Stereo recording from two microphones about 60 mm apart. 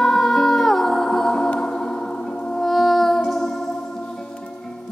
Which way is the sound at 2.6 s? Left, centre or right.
Centre.